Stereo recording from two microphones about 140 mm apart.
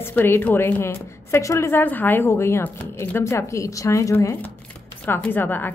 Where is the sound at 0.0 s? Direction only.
15° left (ahead or behind).